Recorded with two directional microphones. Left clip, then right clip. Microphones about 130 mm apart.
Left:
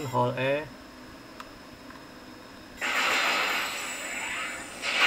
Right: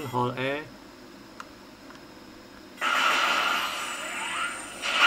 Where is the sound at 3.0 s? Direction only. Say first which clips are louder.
Right 1 dB; 10° left (ahead or behind).